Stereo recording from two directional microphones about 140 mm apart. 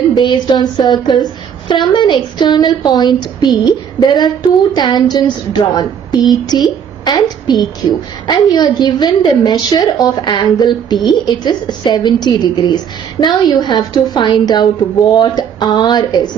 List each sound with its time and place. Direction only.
0.1 s a woman's voice: 35° left (ahead or behind)